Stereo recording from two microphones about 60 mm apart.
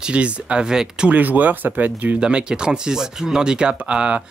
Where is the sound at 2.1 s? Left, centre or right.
Centre.